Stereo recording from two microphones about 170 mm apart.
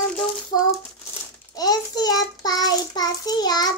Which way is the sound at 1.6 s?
25° left (ahead or behind).